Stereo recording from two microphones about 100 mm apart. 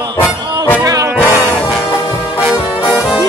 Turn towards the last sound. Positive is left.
turn(degrees=0)  # may be behind; listen again after turning